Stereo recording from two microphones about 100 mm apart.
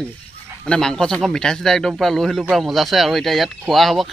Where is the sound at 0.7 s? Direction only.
5° left (ahead or behind).